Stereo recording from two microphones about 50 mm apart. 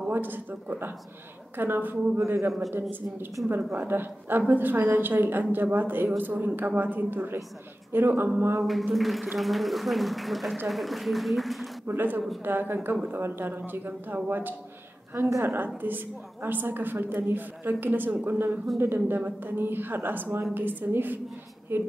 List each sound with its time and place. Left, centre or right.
0.1 s a woman's voice: right
8.6 s speech: centre
11.9 s a woman's voice: right